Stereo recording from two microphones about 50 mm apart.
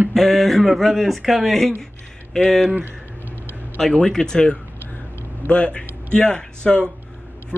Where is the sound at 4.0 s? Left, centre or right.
Centre.